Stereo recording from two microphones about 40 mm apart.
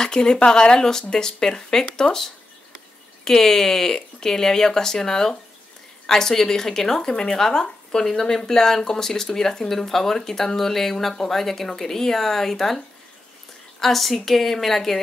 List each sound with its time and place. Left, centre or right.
0.0 s speech: centre
3.3 s a woman's voice: centre